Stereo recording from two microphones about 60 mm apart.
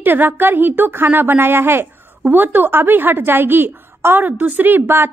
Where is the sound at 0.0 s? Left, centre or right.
Right.